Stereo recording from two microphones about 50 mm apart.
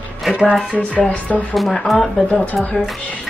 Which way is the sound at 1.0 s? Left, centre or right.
Left.